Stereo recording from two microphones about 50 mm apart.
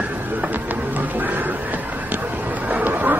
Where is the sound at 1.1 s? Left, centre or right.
Right.